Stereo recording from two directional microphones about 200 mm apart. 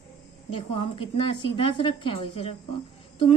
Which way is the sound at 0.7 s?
30° left (ahead or behind).